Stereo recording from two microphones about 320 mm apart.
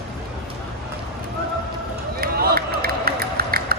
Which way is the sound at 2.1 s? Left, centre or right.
Right.